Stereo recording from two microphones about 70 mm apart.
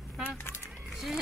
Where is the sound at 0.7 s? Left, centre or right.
Centre.